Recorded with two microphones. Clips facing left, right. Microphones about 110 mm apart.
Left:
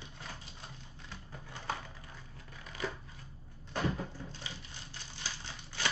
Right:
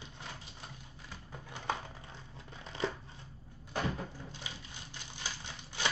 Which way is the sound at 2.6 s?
30° right (ahead or behind).